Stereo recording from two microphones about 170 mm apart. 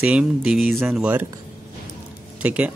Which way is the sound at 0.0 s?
5° right (ahead or behind).